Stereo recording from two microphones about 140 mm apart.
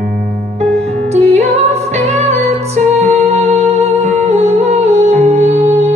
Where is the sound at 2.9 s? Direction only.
50° right (ahead or behind).